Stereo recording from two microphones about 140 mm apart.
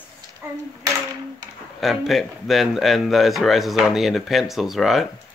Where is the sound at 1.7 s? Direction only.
Centre (ahead or behind).